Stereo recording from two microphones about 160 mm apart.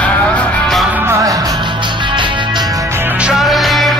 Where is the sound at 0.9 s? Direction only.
15° right (ahead or behind).